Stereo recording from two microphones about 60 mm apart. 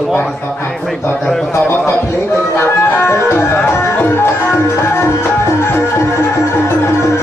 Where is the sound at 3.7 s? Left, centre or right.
Left.